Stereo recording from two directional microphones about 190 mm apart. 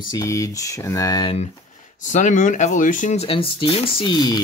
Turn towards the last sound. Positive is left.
turn(degrees=20)  # may be behind; listen again after turning